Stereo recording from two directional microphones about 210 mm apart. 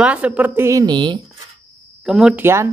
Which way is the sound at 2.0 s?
Centre (ahead or behind).